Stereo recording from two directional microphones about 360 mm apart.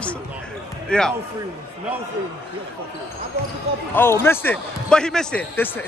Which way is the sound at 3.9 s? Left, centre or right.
Centre.